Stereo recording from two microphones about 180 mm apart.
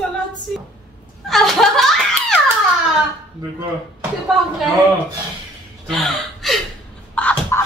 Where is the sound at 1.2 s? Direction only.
Centre (ahead or behind).